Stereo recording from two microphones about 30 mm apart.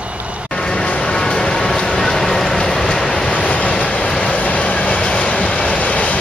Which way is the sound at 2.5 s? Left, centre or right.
Left.